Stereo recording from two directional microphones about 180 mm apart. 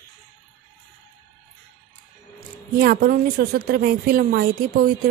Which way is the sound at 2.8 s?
55° right (ahead or behind).